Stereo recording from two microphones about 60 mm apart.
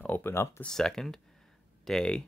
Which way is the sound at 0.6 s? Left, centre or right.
Centre.